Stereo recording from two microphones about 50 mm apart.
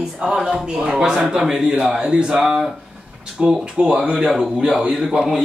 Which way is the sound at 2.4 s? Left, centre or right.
Centre.